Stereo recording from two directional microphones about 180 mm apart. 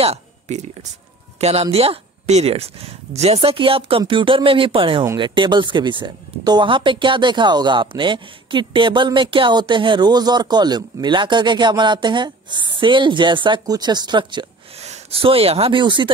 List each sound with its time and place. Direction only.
0.0 s speech: 40° right (ahead or behind)
14.8 s speech: 35° right (ahead or behind)